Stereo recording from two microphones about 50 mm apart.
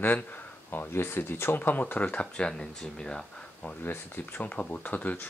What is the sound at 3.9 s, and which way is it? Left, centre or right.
Speech, left.